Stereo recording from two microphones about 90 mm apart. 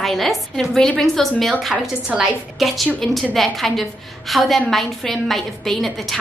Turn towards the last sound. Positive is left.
turn(degrees=0)  # may be behind; listen again after turning